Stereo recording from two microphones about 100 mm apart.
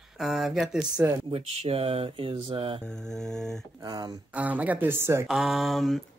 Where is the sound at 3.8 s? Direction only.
45° right (ahead or behind).